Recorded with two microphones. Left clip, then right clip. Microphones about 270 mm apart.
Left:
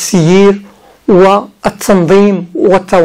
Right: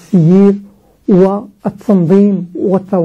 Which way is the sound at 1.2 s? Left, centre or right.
Left.